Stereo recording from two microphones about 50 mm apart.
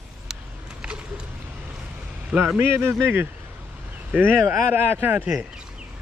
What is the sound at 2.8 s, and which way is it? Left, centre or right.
Speech, right.